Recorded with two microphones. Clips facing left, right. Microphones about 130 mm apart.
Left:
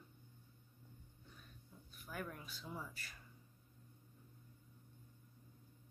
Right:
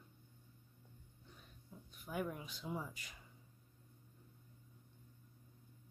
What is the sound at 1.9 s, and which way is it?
Speech, 20° right (ahead or behind).